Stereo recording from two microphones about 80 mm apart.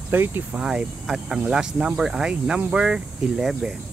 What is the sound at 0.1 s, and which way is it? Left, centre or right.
Speech, right.